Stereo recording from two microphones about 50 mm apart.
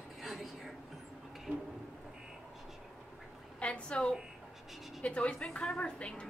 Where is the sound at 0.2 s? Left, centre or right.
Centre.